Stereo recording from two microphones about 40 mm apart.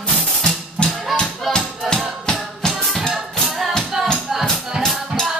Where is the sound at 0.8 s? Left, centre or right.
Left.